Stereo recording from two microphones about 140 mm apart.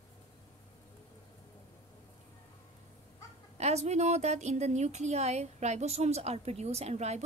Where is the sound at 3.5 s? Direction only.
50° right (ahead or behind).